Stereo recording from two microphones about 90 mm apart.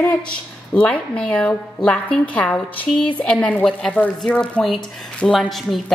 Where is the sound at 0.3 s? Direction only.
15° left (ahead or behind).